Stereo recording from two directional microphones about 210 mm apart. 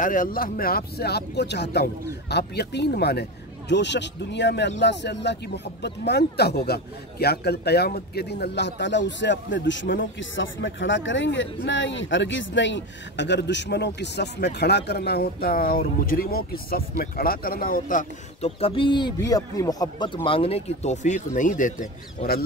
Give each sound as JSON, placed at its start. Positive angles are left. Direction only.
{"t": 0.0, "sound": "a man's voice", "side_deg": 40}